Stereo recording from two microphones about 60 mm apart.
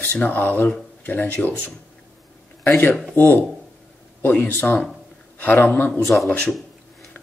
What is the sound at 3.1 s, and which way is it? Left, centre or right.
Speech, left.